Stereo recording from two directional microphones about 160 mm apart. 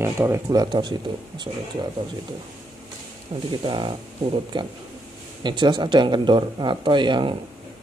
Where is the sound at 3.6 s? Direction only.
30° right (ahead or behind).